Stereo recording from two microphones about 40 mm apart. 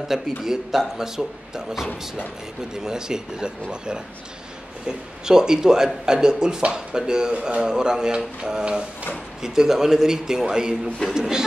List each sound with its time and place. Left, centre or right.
0.1 s speech: centre
2.8 s speech: centre
4.8 s speech: centre
6.6 s a sound: right
9.4 s speech: centre